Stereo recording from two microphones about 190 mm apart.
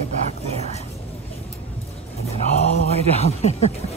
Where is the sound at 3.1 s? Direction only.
35° left (ahead or behind).